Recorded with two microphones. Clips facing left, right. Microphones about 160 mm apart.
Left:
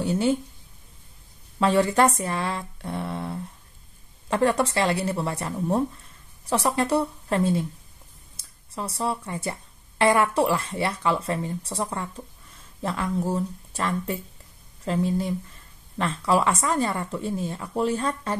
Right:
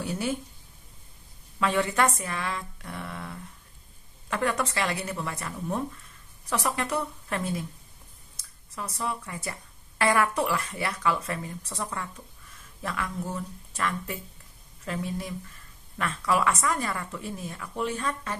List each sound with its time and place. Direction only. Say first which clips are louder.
0.0 s speech: left 7 dB; 25° left (ahead or behind)
1.6 s a woman's voice: left 5 dB; 35° left (ahead or behind)